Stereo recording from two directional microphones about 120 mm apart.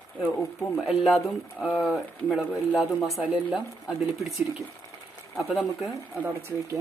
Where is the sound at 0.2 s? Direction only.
15° left (ahead or behind).